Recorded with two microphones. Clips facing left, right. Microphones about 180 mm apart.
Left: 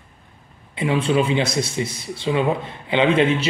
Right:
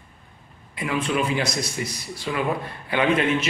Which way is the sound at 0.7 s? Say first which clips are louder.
Left 5 dB; 25° left (ahead or behind).